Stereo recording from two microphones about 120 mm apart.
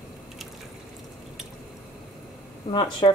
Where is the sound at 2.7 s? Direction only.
40° left (ahead or behind).